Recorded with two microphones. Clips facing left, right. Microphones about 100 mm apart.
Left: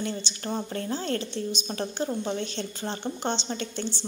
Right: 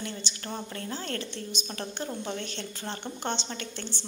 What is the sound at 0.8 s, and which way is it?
A woman's voice, 25° left (ahead or behind).